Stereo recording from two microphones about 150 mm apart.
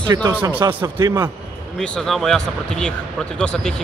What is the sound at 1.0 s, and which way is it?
Speech, 25° right (ahead or behind).